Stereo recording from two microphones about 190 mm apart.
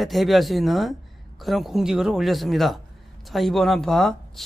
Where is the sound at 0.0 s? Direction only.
Centre (ahead or behind).